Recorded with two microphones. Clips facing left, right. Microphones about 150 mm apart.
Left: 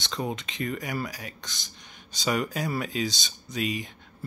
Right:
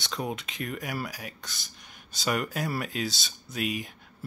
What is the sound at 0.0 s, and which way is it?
Speech, 5° right (ahead or behind).